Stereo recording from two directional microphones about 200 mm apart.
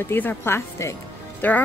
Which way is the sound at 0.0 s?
10° left (ahead or behind).